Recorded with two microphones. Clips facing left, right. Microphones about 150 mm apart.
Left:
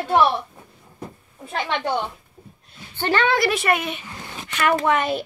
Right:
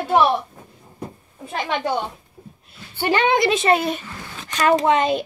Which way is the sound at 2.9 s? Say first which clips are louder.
Right 2 dB; 15° right (ahead or behind).